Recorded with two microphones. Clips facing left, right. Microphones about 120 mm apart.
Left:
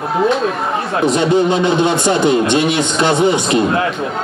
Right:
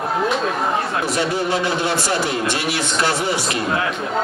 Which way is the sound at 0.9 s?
20° left (ahead or behind).